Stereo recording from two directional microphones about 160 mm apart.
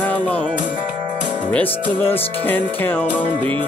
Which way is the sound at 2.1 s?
35° left (ahead or behind).